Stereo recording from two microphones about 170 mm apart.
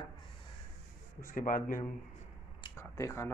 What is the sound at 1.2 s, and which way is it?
Speech, 55° left (ahead or behind).